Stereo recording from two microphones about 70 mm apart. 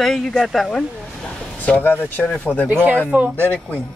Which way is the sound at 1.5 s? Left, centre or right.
Left.